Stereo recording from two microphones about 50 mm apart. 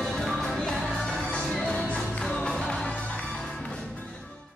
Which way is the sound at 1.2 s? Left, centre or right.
Centre.